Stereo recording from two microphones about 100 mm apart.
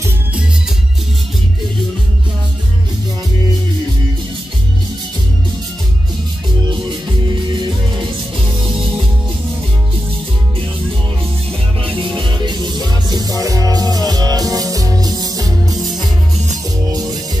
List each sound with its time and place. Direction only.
6.7 s music: 55° right (ahead or behind)
11.8 s music: 60° right (ahead or behind); by 15.8 s 35° right (ahead or behind)
15.8 s music: centre (ahead or behind)
16.9 s music: 40° right (ahead or behind)